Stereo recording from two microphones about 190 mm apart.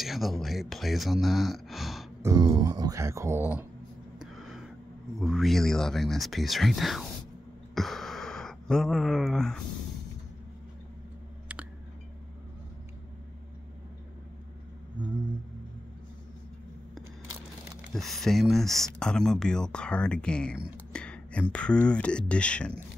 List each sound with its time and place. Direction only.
0.0 s speech: centre (ahead or behind)
2.2 s speech: 20° right (ahead or behind)
5.2 s speech: centre (ahead or behind)
7.7 s a sound: centre (ahead or behind)
17.9 s speech: centre (ahead or behind)